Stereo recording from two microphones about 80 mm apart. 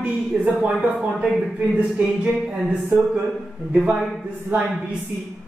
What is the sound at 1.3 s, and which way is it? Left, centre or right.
Speech, centre.